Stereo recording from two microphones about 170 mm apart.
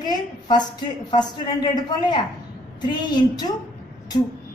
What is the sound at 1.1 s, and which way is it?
A woman's voice, 25° left (ahead or behind).